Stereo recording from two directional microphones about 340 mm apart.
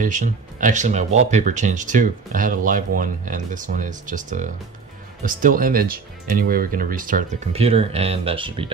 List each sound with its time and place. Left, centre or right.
0.0 s speech: right